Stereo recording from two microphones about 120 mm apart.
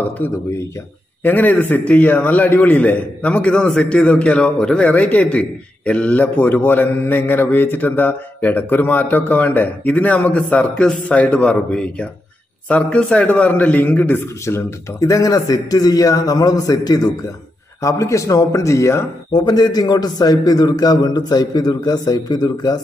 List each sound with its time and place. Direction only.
0.2 s a man's voice: 15° left (ahead or behind)
19.3 s a man's voice: 35° left (ahead or behind)